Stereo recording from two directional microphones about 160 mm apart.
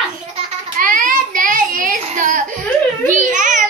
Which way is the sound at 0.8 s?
55° right (ahead or behind).